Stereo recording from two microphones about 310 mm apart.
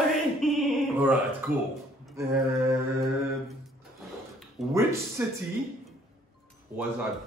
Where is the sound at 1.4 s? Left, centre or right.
Centre.